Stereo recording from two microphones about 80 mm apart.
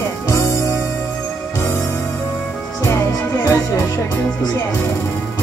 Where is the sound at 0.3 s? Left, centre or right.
Left.